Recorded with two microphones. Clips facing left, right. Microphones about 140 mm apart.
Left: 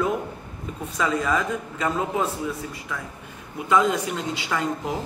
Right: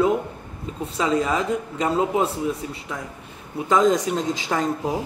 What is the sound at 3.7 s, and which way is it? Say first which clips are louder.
A man's voice: right 3 dB; 35° right (ahead or behind).